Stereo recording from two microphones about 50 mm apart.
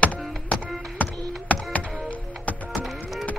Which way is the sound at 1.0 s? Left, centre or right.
Left.